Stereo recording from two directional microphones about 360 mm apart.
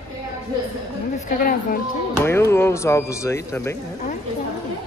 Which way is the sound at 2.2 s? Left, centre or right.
Centre.